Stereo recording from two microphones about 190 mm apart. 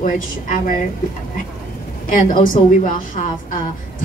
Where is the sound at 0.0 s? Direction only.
45° left (ahead or behind).